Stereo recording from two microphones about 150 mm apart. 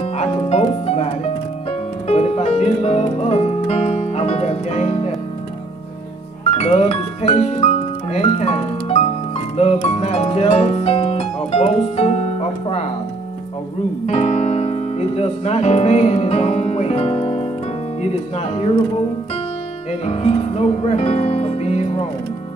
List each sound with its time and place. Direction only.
0.0 s music: 45° left (ahead or behind)
6.5 s music: 45° left (ahead or behind)
14.0 s piano: 45° left (ahead or behind)
18.0 s speech: 45° left (ahead or behind)
19.9 s speech: 40° left (ahead or behind)